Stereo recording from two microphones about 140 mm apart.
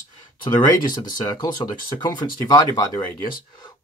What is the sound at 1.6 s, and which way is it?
Speech, 35° left (ahead or behind).